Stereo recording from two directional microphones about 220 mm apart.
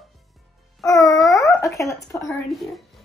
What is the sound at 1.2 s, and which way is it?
Dog, 15° left (ahead or behind).